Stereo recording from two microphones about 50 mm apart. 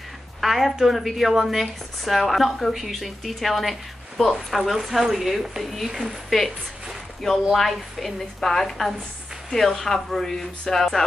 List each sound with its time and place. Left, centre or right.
0.4 s a sound: centre
0.7 s a woman's voice: centre
7.5 s a woman's voice: centre